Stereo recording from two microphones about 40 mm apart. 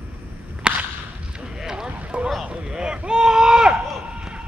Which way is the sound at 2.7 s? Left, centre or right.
Centre.